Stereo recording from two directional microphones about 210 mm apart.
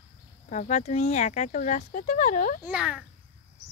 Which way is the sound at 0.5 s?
35° left (ahead or behind).